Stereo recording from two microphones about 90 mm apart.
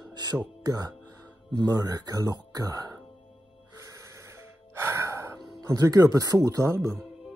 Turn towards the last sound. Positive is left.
turn(degrees=-30)  # may be behind; listen again after turning